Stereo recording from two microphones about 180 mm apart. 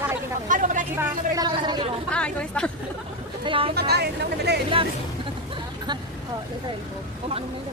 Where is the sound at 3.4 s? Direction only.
30° right (ahead or behind).